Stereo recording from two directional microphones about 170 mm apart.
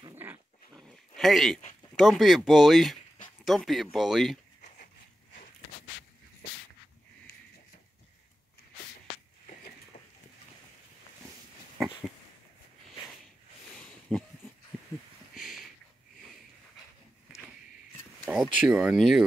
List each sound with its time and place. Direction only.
0.1 s dog: 10° right (ahead or behind)
0.7 s dog: centre (ahead or behind)
2.0 s speech: centre (ahead or behind)
9.9 s a sound: 50° left (ahead or behind)
13.7 s a sound: 5° left (ahead or behind)
18.3 s speech: 5° right (ahead or behind)